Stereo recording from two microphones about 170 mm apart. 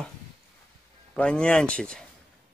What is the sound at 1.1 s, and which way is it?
Speech, 5° left (ahead or behind).